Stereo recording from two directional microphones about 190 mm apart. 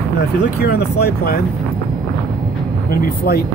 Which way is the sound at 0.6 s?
60° left (ahead or behind).